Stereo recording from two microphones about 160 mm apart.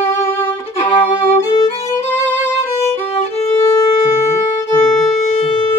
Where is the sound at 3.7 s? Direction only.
20° left (ahead or behind).